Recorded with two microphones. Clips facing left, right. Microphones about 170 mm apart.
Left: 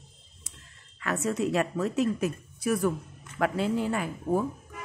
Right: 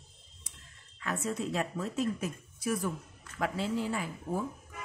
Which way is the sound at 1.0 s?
75° left (ahead or behind).